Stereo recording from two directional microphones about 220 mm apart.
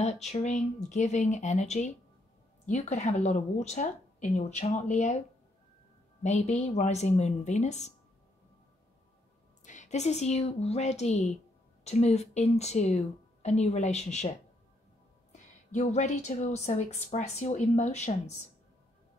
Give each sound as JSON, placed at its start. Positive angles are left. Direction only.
{"t": 0.0, "sound": "a woman's voice", "side_deg": 30}
{"t": 6.2, "sound": "a woman's voice", "side_deg": 30}
{"t": 9.7, "sound": "a woman's voice", "side_deg": 30}
{"t": 15.3, "sound": "a woman's voice", "side_deg": 30}